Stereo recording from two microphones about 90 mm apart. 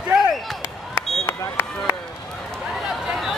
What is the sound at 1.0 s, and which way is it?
Run, 25° left (ahead or behind).